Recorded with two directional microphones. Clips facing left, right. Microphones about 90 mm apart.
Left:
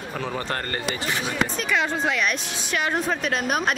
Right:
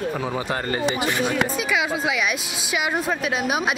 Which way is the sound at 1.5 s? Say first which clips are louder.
Right 1 dB; 5° right (ahead or behind).